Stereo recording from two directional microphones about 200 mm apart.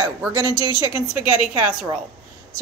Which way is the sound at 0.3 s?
20° right (ahead or behind).